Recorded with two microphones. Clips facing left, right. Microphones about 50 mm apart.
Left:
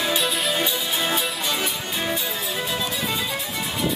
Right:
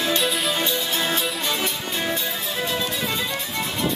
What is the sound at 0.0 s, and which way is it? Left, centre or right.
Music, centre.